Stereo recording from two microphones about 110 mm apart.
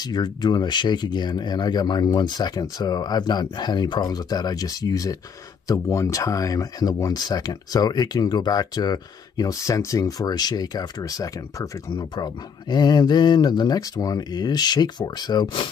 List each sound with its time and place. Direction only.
0.0 s speech: 40° left (ahead or behind)
11.9 s speech: 45° left (ahead or behind)